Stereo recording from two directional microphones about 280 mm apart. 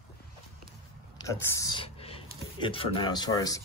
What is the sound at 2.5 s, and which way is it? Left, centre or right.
Speech, centre.